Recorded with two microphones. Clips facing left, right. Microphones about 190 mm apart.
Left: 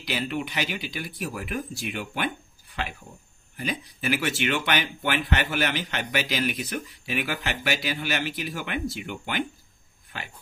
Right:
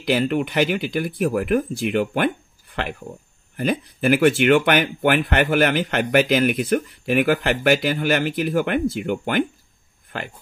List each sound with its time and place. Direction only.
0.0 s speech: 55° right (ahead or behind)